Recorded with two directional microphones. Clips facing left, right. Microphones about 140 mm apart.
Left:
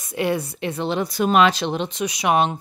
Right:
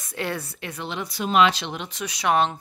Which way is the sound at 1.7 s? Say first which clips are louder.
Left 8 dB; 20° left (ahead or behind).